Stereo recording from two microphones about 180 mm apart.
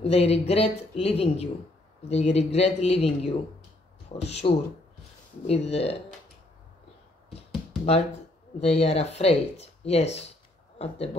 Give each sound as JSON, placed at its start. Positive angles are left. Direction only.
{"t": 0.0, "sound": "speech", "side_deg": 35}
{"t": 7.3, "sound": "a sound", "side_deg": 35}
{"t": 8.5, "sound": "speech", "side_deg": 35}